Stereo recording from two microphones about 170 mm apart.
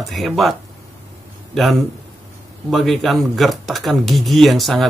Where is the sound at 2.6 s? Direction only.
Centre (ahead or behind).